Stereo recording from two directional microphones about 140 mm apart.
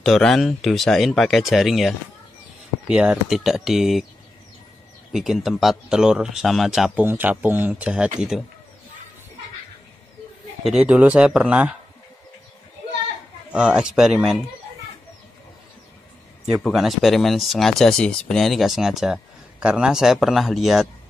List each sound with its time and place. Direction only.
0.0 s speech: 5° left (ahead or behind)
5.1 s speech: 5° right (ahead or behind)
7.0 s speech: 15° right (ahead or behind)
10.6 s speech: 5° right (ahead or behind)
13.5 s speech: 5° right (ahead or behind)
16.6 s speech: centre (ahead or behind)